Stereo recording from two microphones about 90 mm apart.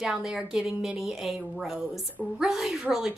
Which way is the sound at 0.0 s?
5° right (ahead or behind).